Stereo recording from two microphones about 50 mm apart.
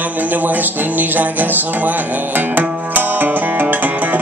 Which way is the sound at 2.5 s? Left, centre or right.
Right.